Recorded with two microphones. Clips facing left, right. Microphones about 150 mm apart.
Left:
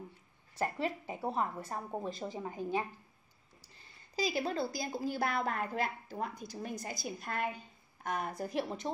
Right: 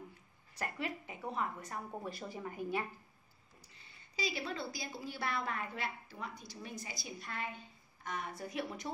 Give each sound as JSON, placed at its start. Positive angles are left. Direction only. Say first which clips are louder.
{"t": 0.6, "sound": "a woman's voice", "louder": "left 6 dB", "side_deg": 30}
{"t": 3.8, "sound": "a woman's voice", "louder": "left 5 dB", "side_deg": 40}
{"t": 8.5, "sound": "a woman's voice", "louder": "left 4 dB", "side_deg": 25}